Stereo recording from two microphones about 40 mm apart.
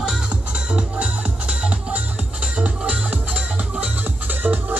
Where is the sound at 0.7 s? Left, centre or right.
Right.